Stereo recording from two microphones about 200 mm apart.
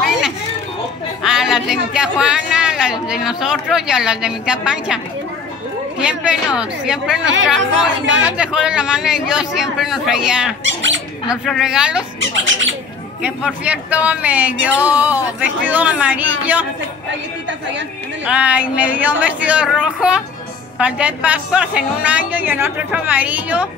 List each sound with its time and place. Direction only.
0.0 s music: centre (ahead or behind)
1.2 s a man's voice: centre (ahead or behind)
10.6 s speech: 70° right (ahead or behind)
11.2 s a man's voice: centre (ahead or behind)
12.2 s speech: 70° right (ahead or behind)
13.2 s a woman's voice: 5° right (ahead or behind)
18.2 s a woman's voice: 5° right (ahead or behind)